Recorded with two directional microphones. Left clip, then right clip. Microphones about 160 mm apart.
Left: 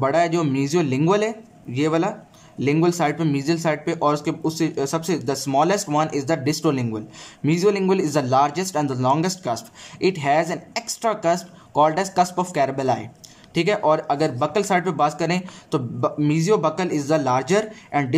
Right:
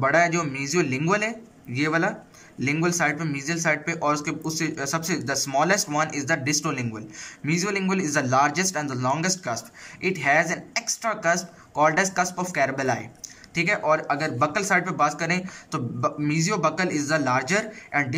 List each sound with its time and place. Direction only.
0.0 s a woman's voice: 20° left (ahead or behind)